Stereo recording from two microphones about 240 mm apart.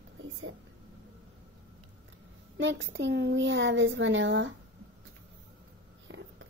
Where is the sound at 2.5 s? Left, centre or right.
Right.